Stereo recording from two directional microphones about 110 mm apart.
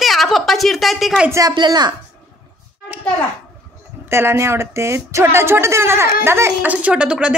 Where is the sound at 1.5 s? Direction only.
40° right (ahead or behind).